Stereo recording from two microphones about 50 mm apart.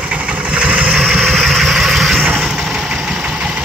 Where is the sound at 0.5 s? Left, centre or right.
Right.